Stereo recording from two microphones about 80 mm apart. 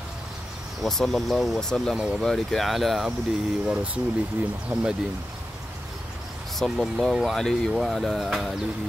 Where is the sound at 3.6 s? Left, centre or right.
Centre.